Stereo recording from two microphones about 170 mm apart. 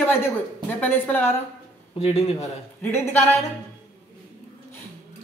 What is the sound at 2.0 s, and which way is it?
Speech, 35° left (ahead or behind).